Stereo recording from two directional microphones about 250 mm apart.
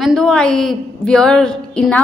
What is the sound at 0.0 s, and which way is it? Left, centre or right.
A woman's voice, centre.